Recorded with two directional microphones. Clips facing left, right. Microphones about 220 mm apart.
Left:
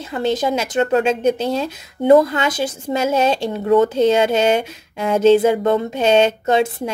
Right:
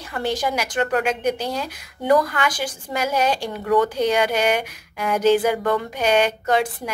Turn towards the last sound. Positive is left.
turn(degrees=25)  # may be behind; listen again after turning